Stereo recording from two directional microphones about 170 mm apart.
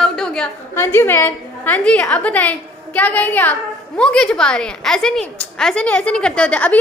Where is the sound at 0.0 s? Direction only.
5° left (ahead or behind).